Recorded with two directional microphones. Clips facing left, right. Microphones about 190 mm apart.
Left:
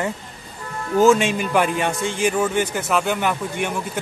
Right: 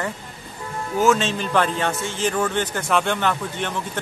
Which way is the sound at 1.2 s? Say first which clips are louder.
Left 2 dB; 10° left (ahead or behind).